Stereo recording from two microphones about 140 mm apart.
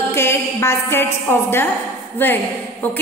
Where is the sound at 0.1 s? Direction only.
15° left (ahead or behind).